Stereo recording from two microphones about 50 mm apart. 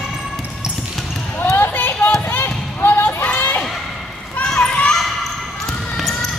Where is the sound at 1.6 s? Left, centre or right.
Left.